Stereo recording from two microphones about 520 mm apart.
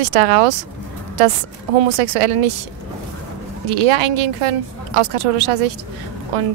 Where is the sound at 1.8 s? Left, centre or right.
Right.